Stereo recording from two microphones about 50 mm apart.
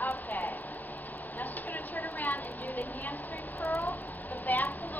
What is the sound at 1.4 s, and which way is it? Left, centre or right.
Speech, left.